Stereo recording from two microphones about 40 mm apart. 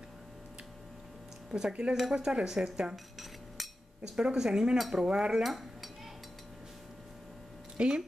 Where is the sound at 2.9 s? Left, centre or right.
Centre.